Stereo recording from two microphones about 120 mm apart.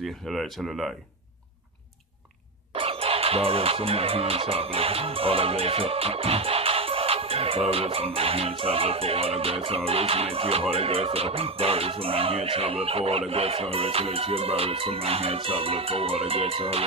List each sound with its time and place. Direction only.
0.0 s speech: centre (ahead or behind)
2.7 s speech: 50° right (ahead or behind)